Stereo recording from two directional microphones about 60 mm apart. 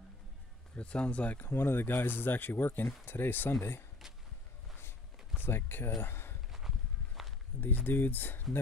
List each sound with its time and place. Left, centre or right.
0.7 s speech: centre
1.5 s speech: left
5.4 s speech: left
6.0 s walk: left
7.6 s speech: left